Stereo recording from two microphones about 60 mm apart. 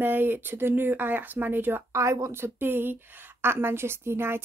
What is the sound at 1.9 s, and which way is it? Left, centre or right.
Speech, right.